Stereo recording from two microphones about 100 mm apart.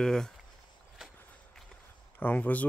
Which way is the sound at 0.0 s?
5° left (ahead or behind).